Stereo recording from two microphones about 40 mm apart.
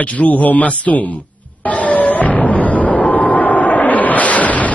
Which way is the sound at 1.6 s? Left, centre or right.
Left.